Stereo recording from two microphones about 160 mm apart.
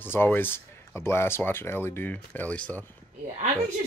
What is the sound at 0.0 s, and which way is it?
Speech, 15° left (ahead or behind).